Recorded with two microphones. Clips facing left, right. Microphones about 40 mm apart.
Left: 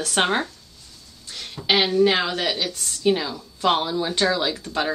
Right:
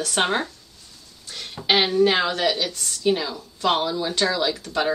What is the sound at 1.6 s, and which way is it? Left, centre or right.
Speech, centre.